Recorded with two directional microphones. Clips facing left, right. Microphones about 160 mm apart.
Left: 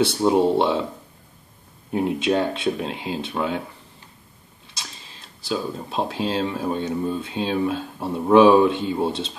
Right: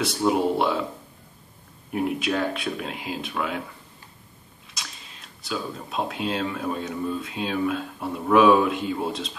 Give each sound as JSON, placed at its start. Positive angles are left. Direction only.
{"t": 0.0, "sound": "speech", "side_deg": 30}
{"t": 1.9, "sound": "speech", "side_deg": 25}
{"t": 4.6, "sound": "speech", "side_deg": 30}